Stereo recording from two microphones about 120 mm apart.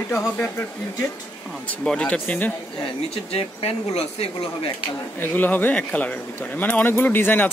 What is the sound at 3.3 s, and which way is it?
Speech, 55° left (ahead or behind).